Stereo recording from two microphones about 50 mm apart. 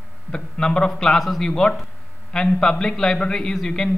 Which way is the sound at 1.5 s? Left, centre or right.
Centre.